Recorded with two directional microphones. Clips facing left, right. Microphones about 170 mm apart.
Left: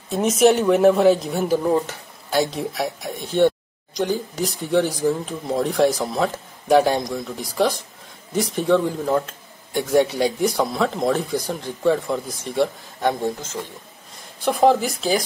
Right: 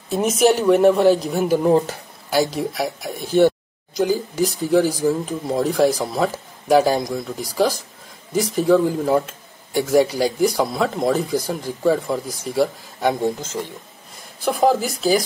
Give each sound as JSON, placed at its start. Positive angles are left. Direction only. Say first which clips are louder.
{"t": 0.1, "sound": "speech", "louder": "even", "side_deg": 0}
{"t": 1.7, "sound": "speech", "louder": "right 4 dB", "side_deg": -30}
{"t": 2.3, "sound": "speech", "louder": "right 2 dB", "side_deg": 0}
{"t": 14.4, "sound": "speech", "louder": "left 1 dB", "side_deg": 0}